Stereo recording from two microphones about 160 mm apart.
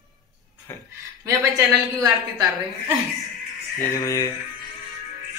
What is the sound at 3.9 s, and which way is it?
Speech, 20° left (ahead or behind).